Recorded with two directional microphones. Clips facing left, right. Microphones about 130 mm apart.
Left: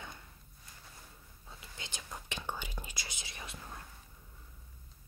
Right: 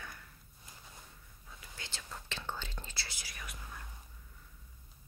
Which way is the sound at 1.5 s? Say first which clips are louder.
Left 1 dB; 20° left (ahead or behind).